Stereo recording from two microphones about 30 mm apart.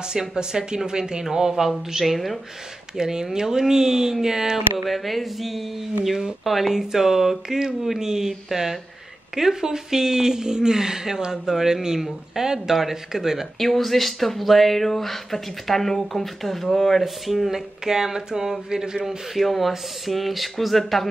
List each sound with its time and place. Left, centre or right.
0.1 s speech: right
4.8 s speech: centre
13.6 s speech: centre
17.0 s speech: centre
19.0 s speech: centre